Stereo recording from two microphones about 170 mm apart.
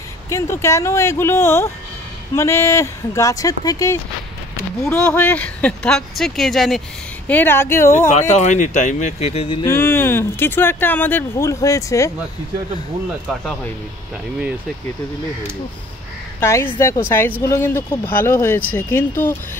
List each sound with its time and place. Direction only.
0.3 s speech: 15° left (ahead or behind)
4.8 s speech: 5° left (ahead or behind)
7.2 s speech: 10° left (ahead or behind)
8.1 s speech: 45° left (ahead or behind)
9.6 s speech: 15° left (ahead or behind)
16.3 s speech: 15° left (ahead or behind)